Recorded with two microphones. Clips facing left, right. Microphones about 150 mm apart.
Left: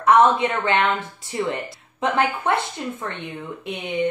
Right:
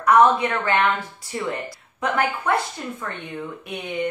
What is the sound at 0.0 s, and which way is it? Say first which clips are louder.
Speech: even; 25° left (ahead or behind).